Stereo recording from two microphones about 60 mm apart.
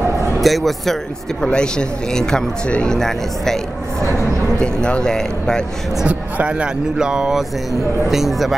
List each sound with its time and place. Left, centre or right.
0.4 s speech: centre
1.4 s speech: centre
6.0 s speech: centre